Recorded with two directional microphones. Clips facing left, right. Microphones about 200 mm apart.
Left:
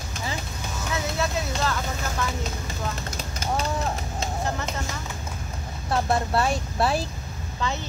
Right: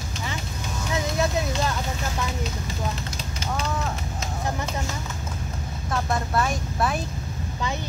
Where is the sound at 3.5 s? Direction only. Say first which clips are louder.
Left 2 dB; 35° left (ahead or behind).